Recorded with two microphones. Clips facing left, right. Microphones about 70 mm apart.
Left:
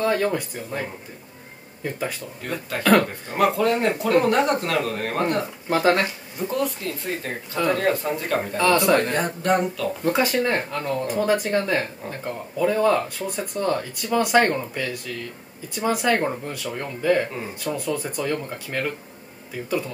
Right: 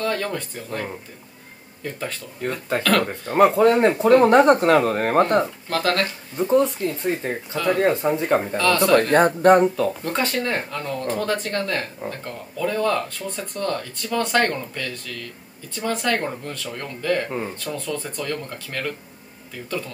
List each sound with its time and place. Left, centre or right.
0.0 s speech: centre
2.4 s speech: right
2.8 s speech: centre
3.3 s speech: right
5.7 s speech: centre
6.3 s speech: right
8.5 s speech: centre
9.1 s speech: right
10.0 s speech: centre